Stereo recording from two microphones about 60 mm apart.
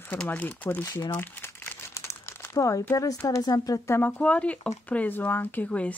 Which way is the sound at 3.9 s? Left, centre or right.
Left.